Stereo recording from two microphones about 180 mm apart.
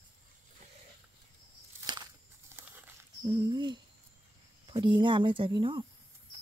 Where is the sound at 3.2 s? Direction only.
25° right (ahead or behind).